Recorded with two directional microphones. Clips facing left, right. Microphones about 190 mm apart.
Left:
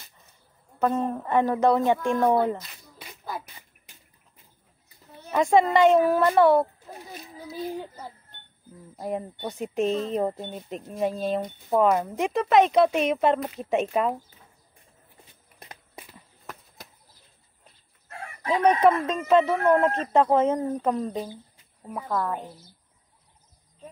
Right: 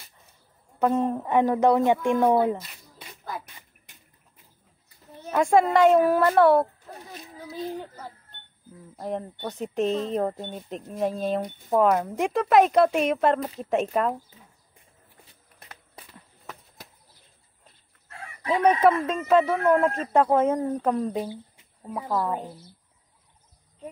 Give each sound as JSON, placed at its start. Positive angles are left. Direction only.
{"t": 0.7, "sound": "a woman's voice", "side_deg": -10}
{"t": 5.3, "sound": "speech", "side_deg": -5}
{"t": 6.9, "sound": "speech", "side_deg": 10}
{"t": 15.6, "sound": "a sound", "side_deg": 15}
{"t": 18.5, "sound": "speech", "side_deg": -5}
{"t": 21.8, "sound": "a woman's voice", "side_deg": -20}
{"t": 22.1, "sound": "a woman's voice", "side_deg": -10}